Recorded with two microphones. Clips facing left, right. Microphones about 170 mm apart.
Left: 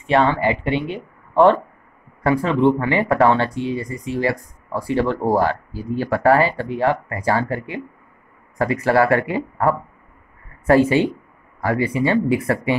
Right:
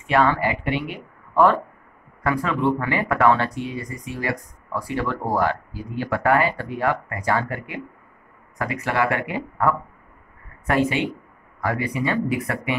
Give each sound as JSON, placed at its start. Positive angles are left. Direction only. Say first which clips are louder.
{"t": 0.0, "sound": "speech", "louder": "left 3 dB", "side_deg": 25}